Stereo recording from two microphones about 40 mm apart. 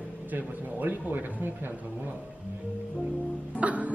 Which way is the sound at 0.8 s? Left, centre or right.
Right.